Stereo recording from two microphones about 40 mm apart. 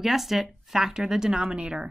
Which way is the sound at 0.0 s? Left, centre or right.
Centre.